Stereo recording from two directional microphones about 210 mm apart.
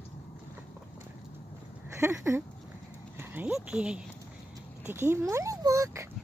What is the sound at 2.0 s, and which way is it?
Speech, 15° right (ahead or behind).